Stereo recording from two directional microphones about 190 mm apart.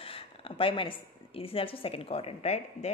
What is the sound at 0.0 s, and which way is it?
Speech, 30° left (ahead or behind).